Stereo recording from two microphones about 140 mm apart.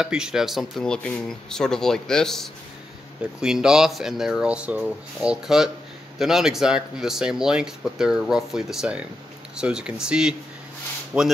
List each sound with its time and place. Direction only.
0.0 s speech: 5° right (ahead or behind)